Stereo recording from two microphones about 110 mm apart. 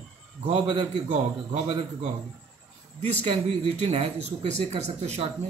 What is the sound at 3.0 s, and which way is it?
Speech, 65° right (ahead or behind).